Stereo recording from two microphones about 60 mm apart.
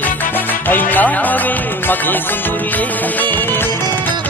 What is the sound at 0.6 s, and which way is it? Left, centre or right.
Music, left.